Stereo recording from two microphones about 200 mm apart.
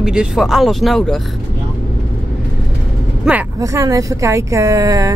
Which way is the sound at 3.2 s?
10° right (ahead or behind).